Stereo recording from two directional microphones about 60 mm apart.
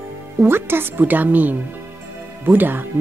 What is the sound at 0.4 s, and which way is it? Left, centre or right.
A woman's voice, right.